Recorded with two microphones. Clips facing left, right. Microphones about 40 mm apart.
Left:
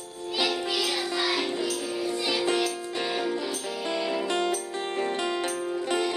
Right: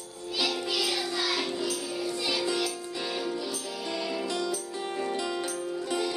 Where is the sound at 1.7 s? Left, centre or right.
Left.